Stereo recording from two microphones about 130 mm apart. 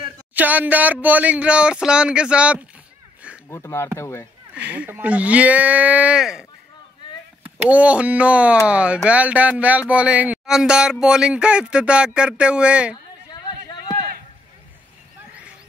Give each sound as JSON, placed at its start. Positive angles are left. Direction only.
{"t": 0.3, "sound": "speech", "side_deg": -10}
{"t": 3.4, "sound": "speech", "side_deg": 20}
{"t": 4.6, "sound": "speech", "side_deg": -10}
{"t": 7.5, "sound": "speech", "side_deg": -10}
{"t": 12.9, "sound": "a sound", "side_deg": 30}